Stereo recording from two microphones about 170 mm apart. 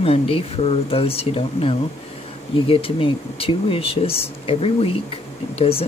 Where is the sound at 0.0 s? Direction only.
35° left (ahead or behind).